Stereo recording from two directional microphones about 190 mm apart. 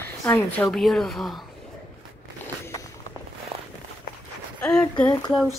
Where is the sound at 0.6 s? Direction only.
Centre (ahead or behind).